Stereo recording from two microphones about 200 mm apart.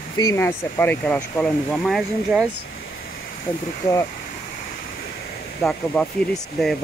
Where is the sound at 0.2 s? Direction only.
15° left (ahead or behind); by 2.4 s centre (ahead or behind).